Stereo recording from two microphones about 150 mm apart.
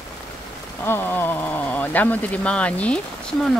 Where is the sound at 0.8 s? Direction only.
15° left (ahead or behind).